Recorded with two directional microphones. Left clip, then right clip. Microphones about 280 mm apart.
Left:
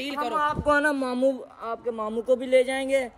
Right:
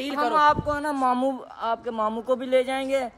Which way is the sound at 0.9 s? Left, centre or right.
Centre.